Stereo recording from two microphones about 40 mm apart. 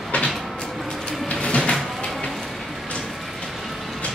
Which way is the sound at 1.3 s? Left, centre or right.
Left.